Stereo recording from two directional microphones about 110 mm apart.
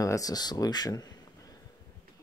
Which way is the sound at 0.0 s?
30° left (ahead or behind).